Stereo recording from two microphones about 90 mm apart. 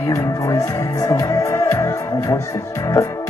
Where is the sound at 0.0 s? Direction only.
40° left (ahead or behind).